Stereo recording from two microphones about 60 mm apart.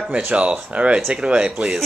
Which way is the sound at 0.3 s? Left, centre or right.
Centre.